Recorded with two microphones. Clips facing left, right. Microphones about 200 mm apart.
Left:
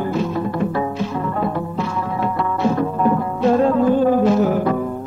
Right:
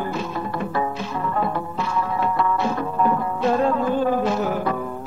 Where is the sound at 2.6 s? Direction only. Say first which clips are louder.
Left 4 dB; 35° left (ahead or behind).